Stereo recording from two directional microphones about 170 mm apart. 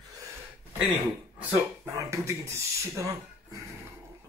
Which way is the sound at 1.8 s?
15° right (ahead or behind).